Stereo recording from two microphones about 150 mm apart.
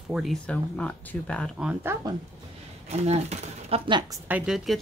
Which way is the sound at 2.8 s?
45° right (ahead or behind).